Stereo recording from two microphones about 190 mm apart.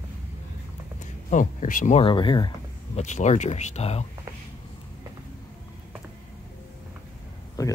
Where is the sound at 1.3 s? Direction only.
45° left (ahead or behind).